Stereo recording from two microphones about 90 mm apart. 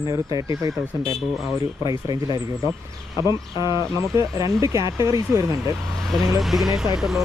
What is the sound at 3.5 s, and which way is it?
Speech, 55° left (ahead or behind).